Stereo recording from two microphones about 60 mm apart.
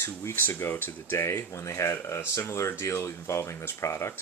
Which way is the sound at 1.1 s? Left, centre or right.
Left.